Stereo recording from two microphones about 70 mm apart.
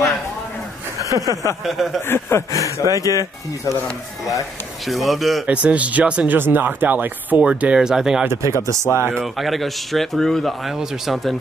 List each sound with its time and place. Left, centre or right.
0.9 s chuckle: right
1.6 s speech: centre
2.0 s speech: left
2.5 s speech: right
3.0 s speech: left
4.8 s speech: centre
5.5 s speech: centre
7.4 s speech: centre
8.3 s speech: right
9.2 s speech: centre